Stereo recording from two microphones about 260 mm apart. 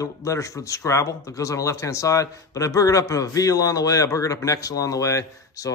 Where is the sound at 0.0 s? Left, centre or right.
Centre.